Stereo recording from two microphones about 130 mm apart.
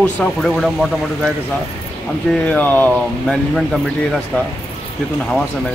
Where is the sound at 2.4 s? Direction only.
15° left (ahead or behind).